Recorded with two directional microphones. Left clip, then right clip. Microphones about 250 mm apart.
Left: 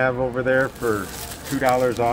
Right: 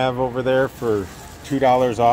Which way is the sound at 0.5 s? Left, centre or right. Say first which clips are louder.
Right 1 dB; centre.